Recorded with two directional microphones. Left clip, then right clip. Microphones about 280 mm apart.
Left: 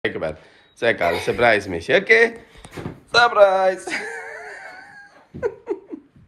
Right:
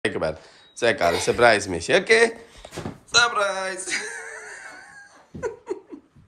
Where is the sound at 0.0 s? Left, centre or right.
Centre.